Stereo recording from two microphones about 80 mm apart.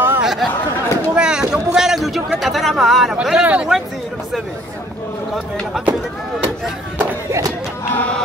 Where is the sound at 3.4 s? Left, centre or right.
Centre.